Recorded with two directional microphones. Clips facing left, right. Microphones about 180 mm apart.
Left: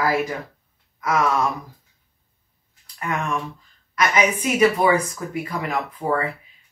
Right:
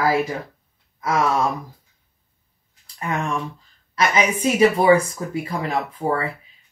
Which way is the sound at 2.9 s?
30° right (ahead or behind).